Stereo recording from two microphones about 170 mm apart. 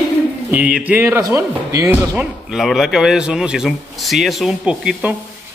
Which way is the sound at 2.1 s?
Centre (ahead or behind).